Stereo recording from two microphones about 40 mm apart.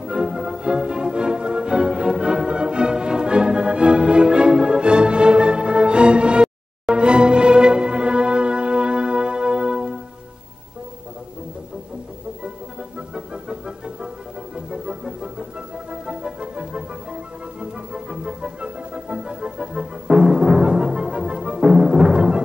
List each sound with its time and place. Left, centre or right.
0.0 s music: right
13.1 s organ: right
14.5 s music: right
21.5 s timpani: centre